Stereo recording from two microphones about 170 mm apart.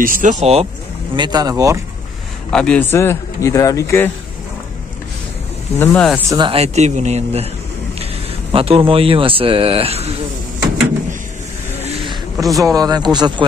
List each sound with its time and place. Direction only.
0.0 s speech: 50° right (ahead or behind)
1.1 s speech: 25° right (ahead or behind)
2.5 s speech: 5° left (ahead or behind)
5.8 s speech: 10° left (ahead or behind)
6.3 s speech: 25° right (ahead or behind)
6.6 s a man's voice: 40° right (ahead or behind)
11.8 s a sound: 35° right (ahead or behind)
12.5 s speech: 20° right (ahead or behind)